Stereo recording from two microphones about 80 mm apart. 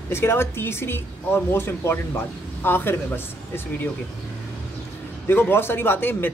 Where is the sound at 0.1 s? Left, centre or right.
Left.